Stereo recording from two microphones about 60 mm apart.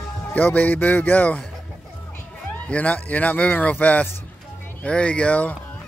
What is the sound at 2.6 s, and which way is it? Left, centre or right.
Speech, left.